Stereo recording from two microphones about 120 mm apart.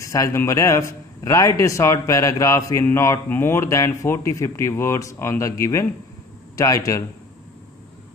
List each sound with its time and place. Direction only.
0.0 s a man's voice: 25° left (ahead or behind)